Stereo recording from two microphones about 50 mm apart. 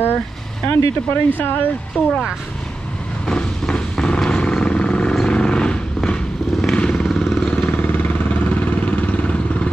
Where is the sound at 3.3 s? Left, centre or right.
Centre.